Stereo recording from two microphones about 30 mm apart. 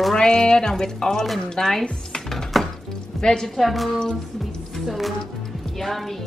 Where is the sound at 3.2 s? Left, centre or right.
Left.